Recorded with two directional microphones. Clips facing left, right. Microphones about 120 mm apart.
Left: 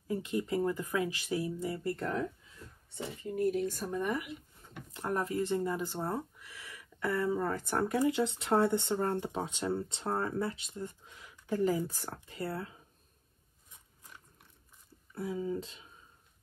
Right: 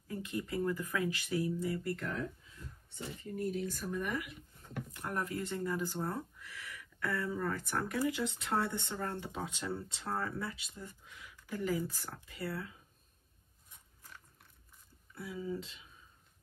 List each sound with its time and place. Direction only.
0.1 s speech: 25° left (ahead or behind)
3.5 s speech: 50° left (ahead or behind)
3.9 s speech: 25° left (ahead or behind)
15.1 s speech: 35° left (ahead or behind)